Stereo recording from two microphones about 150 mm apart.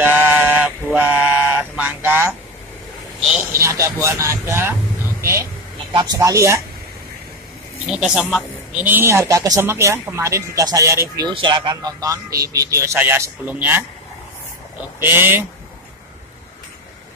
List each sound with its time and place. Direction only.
0.0 s a sound: 15° right (ahead or behind)
3.5 s speech: 20° right (ahead or behind)
5.9 s speech: 20° right (ahead or behind)
7.8 s speech: 5° right (ahead or behind)
15.0 s speech: 15° right (ahead or behind)